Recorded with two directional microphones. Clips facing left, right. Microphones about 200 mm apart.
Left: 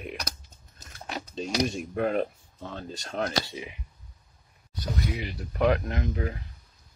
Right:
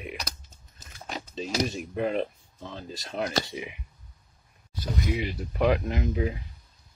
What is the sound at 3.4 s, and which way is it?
Speech, 20° right (ahead or behind).